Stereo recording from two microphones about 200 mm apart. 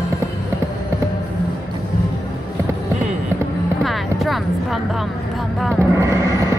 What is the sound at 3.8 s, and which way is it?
Music, centre (ahead or behind).